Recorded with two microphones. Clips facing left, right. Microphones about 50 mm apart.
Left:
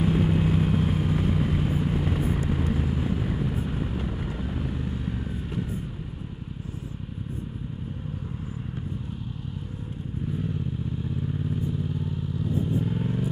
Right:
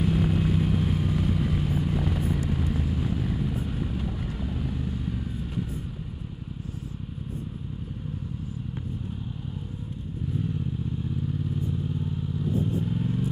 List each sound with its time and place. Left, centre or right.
0.0 s vehicle: centre
12.7 s vehicle: centre